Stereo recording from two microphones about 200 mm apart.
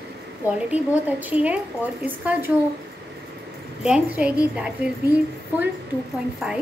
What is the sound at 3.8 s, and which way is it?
Speech, 5° right (ahead or behind).